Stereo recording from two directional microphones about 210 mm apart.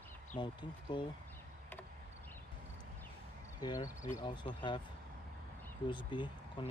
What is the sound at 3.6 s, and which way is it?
Speech, 15° left (ahead or behind).